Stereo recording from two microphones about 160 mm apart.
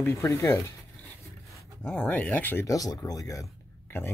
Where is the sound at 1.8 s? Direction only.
10° left (ahead or behind).